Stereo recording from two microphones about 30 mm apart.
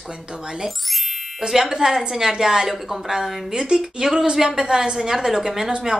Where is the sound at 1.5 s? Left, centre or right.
Centre.